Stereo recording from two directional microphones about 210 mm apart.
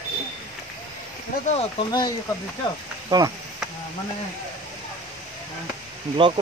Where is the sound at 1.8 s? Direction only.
20° left (ahead or behind).